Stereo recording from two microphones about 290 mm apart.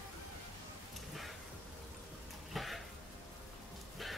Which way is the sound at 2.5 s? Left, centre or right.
Centre.